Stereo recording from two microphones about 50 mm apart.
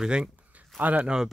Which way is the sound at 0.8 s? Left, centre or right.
Right.